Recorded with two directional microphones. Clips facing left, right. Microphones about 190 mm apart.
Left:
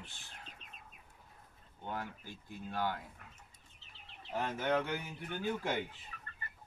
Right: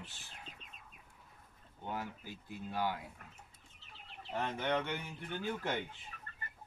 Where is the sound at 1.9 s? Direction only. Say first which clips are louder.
Even; 5° right (ahead or behind).